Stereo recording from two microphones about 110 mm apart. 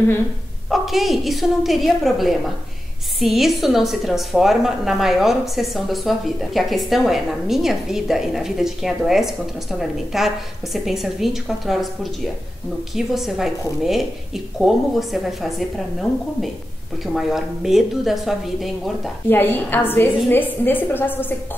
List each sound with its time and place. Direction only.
0.7 s a woman's voice: centre (ahead or behind)
17.0 s a woman's voice: centre (ahead or behind)
19.2 s a woman's voice: 20° left (ahead or behind)